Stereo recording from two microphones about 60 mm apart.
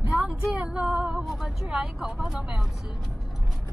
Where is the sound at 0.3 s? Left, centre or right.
Centre.